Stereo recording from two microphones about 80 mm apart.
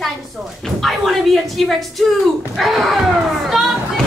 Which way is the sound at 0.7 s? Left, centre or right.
Centre.